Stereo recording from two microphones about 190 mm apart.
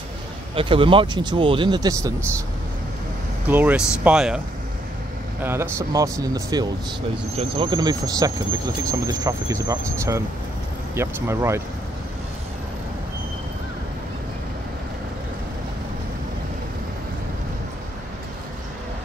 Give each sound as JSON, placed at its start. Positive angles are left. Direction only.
{"t": 0.6, "sound": "speech", "side_deg": -25}
{"t": 3.4, "sound": "speech", "side_deg": -10}
{"t": 5.4, "sound": "speech", "side_deg": -15}